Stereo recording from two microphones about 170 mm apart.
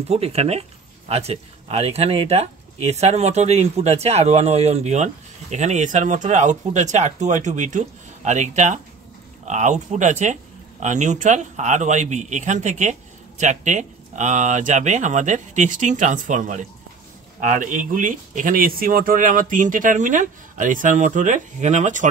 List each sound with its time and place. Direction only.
0.1 s a man's voice: 35° right (ahead or behind)